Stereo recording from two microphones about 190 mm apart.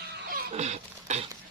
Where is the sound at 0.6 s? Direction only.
35° right (ahead or behind).